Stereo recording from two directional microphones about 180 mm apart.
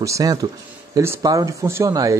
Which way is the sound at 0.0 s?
20° right (ahead or behind).